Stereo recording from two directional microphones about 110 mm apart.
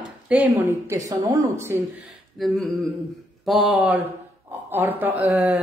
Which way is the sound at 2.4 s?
Centre (ahead or behind).